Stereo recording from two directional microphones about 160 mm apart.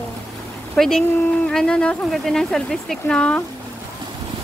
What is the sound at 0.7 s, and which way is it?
Speech, centre (ahead or behind).